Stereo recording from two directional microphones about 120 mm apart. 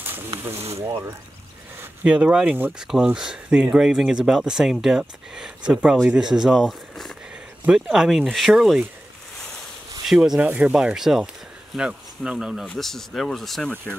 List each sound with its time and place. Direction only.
0.6 s speech: 60° right (ahead or behind)
2.0 s speech: 10° right (ahead or behind)
10.0 s speech: 5° right (ahead or behind)